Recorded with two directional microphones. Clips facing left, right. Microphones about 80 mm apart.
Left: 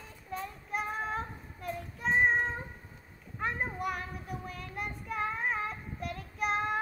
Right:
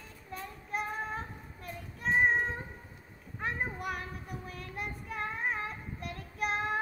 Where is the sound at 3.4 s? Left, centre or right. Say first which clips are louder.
Left 2 dB; centre.